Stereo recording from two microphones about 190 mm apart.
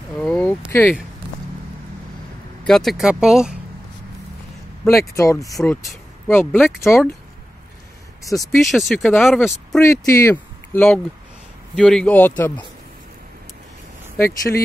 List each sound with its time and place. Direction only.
0.2 s speech: 5° left (ahead or behind)
2.6 s speech: centre (ahead or behind)
4.8 s speech: 15° left (ahead or behind)
6.7 s speech: centre (ahead or behind)
8.2 s speech: 15° left (ahead or behind)
8.7 s speech: centre (ahead or behind)
9.8 s speech: 15° left (ahead or behind)
14.1 s speech: 15° left (ahead or behind)